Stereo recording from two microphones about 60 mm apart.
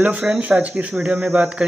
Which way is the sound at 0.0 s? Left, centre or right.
Right.